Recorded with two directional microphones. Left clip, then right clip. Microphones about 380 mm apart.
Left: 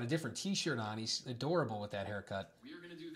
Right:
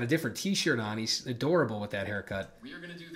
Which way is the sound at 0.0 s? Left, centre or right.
Centre.